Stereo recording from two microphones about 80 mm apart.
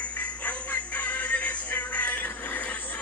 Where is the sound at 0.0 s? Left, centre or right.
Centre.